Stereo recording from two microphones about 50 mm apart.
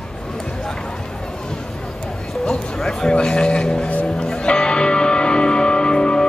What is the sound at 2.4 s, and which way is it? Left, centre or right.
Music, centre.